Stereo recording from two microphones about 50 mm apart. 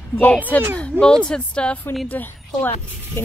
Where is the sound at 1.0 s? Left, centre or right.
Centre.